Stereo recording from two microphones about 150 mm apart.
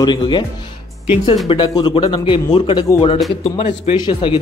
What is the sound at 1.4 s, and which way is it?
A man's voice, 30° left (ahead or behind).